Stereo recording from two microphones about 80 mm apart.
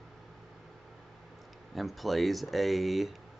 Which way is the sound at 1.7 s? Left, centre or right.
Centre.